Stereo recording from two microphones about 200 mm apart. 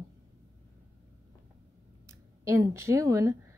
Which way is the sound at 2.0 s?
15° right (ahead or behind).